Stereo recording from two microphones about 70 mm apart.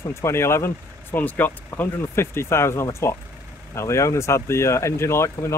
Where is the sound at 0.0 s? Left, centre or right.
Left.